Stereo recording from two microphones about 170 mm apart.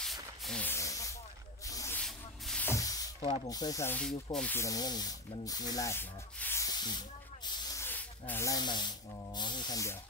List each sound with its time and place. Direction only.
0.0 s a sound: centre (ahead or behind); by 2.0 s 20° left (ahead or behind)
2.0 s a sound: 5° left (ahead or behind)
3.2 s speech: 30° left (ahead or behind)
4.3 s snake: 5° left (ahead or behind)
4.6 s speech: 20° left (ahead or behind)
7.8 s speech: 10° left (ahead or behind)